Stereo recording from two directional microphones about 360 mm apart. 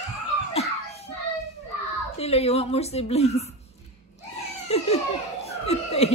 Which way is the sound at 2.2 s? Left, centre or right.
Centre.